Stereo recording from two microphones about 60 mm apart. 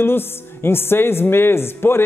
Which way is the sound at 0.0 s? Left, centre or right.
Left.